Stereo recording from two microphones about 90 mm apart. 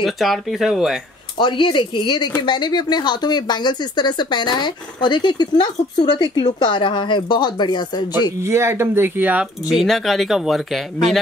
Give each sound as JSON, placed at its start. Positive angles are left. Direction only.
{"t": 0.0, "sound": "speech", "side_deg": 0}
{"t": 1.4, "sound": "speech", "side_deg": 60}
{"t": 8.4, "sound": "speech", "side_deg": -30}
{"t": 9.7, "sound": "speech", "side_deg": 0}